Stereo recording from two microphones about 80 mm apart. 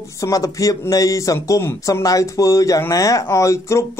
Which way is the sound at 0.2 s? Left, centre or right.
Left.